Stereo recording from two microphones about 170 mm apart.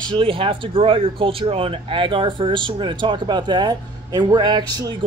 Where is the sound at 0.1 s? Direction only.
30° right (ahead or behind).